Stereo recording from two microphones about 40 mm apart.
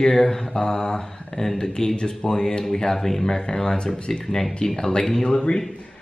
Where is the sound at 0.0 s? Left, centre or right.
Centre.